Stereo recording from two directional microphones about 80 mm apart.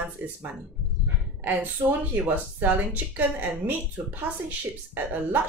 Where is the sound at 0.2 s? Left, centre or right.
Right.